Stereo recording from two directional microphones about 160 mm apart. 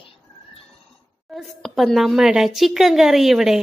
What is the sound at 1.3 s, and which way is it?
A woman's voice, centre (ahead or behind).